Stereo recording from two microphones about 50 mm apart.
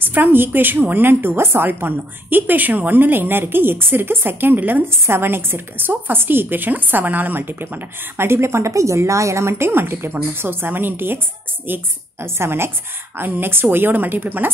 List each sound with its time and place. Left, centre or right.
0.0 s a woman's voice: right
5.0 s a woman's voice: right
8.3 s a woman's voice: right